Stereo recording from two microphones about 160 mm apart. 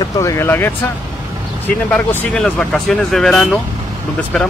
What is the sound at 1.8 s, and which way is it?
Speech, 5° left (ahead or behind).